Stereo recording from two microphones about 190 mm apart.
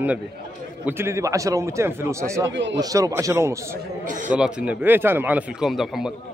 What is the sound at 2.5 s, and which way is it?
Speech, 70° right (ahead or behind).